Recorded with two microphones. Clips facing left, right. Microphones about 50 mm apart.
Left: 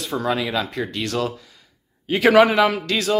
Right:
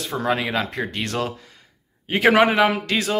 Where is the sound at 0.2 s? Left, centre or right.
Right.